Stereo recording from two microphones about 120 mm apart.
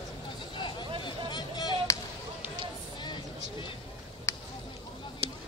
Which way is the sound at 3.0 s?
40° left (ahead or behind).